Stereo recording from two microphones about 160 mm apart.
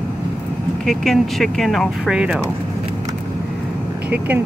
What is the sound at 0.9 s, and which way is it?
Speech, centre (ahead or behind).